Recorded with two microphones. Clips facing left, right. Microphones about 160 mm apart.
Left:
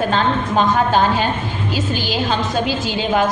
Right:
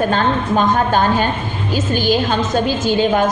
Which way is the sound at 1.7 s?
50° right (ahead or behind).